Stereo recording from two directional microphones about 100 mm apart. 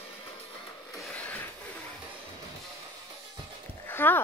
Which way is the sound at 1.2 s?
20° left (ahead or behind).